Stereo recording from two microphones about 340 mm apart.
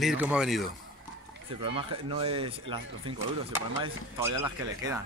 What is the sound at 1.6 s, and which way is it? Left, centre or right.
Speech, centre.